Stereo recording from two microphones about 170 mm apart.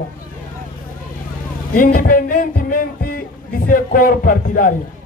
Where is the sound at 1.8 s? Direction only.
55° left (ahead or behind).